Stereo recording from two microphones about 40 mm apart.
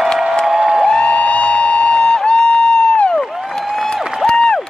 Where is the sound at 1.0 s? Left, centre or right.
Left.